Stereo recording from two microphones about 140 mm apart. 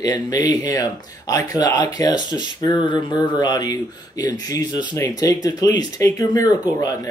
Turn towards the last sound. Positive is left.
turn(degrees=25)  # may be behind; listen again after turning